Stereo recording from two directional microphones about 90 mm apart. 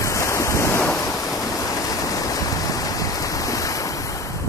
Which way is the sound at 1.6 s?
40° left (ahead or behind).